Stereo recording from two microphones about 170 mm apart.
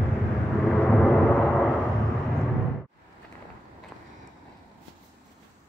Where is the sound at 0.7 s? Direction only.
5° left (ahead or behind).